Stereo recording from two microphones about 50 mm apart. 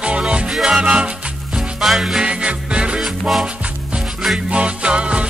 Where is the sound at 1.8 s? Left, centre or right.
Centre.